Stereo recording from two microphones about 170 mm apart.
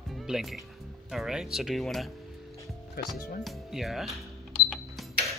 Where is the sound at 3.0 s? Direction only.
65° left (ahead or behind).